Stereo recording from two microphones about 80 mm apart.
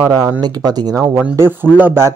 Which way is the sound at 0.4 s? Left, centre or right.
Right.